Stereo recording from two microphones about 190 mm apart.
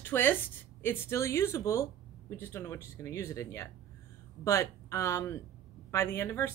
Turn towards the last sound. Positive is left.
turn(degrees=15)  # may be behind; listen again after turning